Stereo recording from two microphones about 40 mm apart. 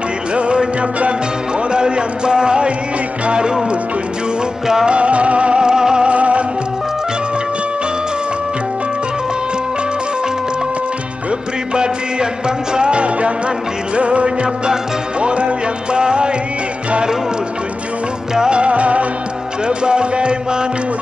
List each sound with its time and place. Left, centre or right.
0.3 s music: right
1.7 s speech: right
4.8 s music: right
6.0 s music: right
11.7 s music: right
18.3 s music: centre
18.6 s music: right